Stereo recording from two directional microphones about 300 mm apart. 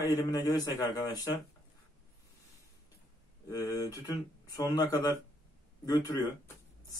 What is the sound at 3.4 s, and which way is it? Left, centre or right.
Speech, centre.